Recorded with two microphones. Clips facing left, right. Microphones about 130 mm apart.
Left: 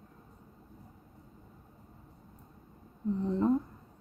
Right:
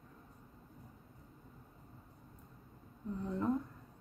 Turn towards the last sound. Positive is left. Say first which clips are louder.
# left 8 dB
turn(degrees=25)  # may be behind; listen again after turning